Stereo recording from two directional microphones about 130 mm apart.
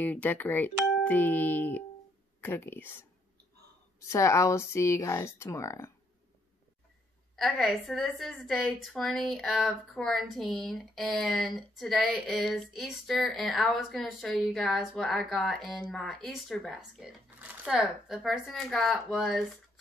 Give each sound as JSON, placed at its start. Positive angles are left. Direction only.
{"t": 0.0, "sound": "speech", "side_deg": 15}
{"t": 4.1, "sound": "speech", "side_deg": 25}
{"t": 7.3, "sound": "a woman's voice", "side_deg": 0}
{"t": 17.4, "sound": "a sound", "side_deg": -10}
{"t": 18.0, "sound": "a woman's voice", "side_deg": 0}